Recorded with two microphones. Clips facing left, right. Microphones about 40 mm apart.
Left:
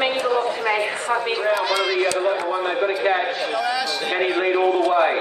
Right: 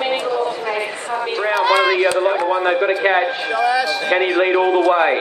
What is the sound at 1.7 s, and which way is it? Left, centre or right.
Speech, right.